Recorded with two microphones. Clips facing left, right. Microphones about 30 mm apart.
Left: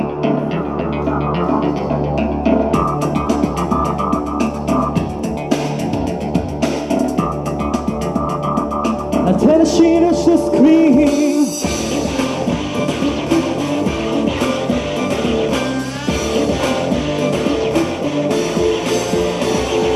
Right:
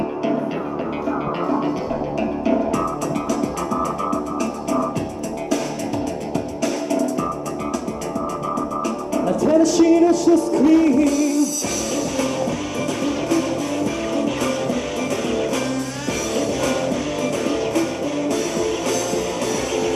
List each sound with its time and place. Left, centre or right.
2.4 s music: left
8.8 s music: left
18.3 s music: left